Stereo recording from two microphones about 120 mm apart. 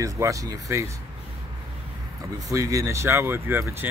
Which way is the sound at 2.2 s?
30° right (ahead or behind).